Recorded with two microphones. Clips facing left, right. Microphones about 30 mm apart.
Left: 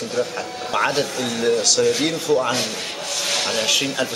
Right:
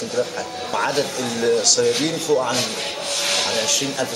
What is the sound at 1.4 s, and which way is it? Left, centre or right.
Speech, centre.